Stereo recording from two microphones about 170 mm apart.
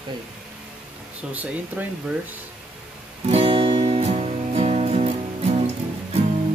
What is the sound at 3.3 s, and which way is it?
Music, 35° right (ahead or behind).